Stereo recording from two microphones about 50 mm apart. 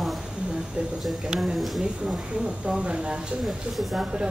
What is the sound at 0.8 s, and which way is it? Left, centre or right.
Speech, right.